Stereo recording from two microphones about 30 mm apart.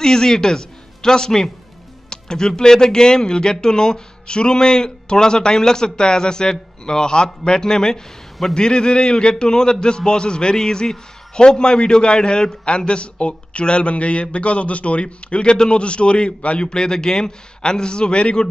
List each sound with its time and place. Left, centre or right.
0.0 s a man's voice: centre